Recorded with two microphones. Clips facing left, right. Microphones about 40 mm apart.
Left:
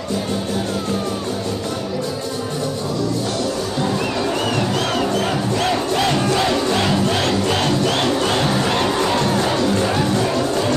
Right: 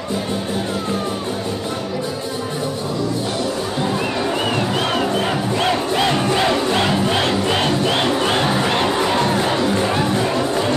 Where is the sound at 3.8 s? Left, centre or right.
Centre.